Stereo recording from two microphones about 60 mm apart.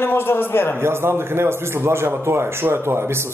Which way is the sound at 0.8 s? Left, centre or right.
Right.